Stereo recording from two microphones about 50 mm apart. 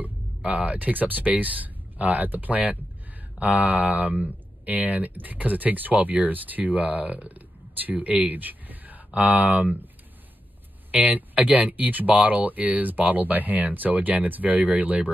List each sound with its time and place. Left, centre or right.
0.0 s speech: right
10.9 s speech: right